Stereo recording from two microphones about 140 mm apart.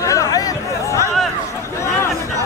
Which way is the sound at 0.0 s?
25° left (ahead or behind).